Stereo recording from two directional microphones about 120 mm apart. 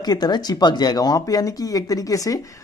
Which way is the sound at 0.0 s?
35° left (ahead or behind).